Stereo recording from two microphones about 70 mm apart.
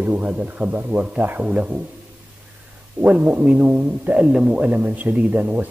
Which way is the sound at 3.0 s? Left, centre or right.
Right.